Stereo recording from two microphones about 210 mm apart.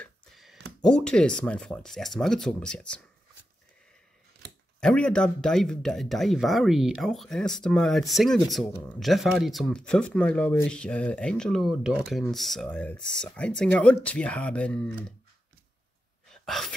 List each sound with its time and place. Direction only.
0.0 s a sound: centre (ahead or behind)
0.8 s speech: 5° left (ahead or behind)
4.7 s speech: 5° left (ahead or behind)
16.4 s speech: centre (ahead or behind)